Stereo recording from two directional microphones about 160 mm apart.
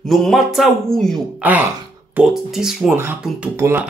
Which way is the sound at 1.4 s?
10° right (ahead or behind).